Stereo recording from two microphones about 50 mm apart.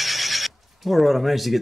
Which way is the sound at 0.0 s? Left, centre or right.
Centre.